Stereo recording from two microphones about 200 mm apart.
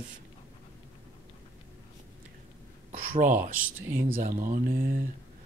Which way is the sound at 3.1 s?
40° right (ahead or behind).